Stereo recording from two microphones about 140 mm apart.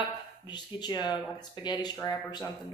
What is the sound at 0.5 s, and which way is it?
A woman's voice, 30° left (ahead or behind).